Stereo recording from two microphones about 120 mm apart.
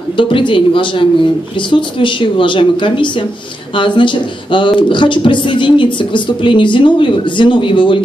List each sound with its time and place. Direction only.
0.2 s speech: 45° left (ahead or behind)